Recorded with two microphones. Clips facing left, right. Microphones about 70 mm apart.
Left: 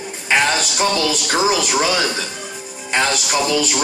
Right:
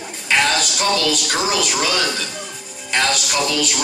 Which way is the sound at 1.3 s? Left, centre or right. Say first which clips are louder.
Left 3 dB; left.